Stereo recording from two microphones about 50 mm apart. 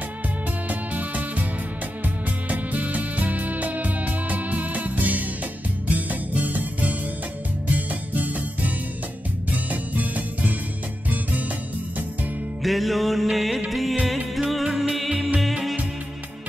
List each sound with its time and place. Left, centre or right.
0.7 s music: right
2.5 s music: right
8.1 s music: right
12.6 s music: centre